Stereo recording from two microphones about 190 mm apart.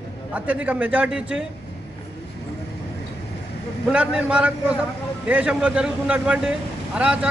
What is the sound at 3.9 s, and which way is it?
A man's voice, 5° right (ahead or behind).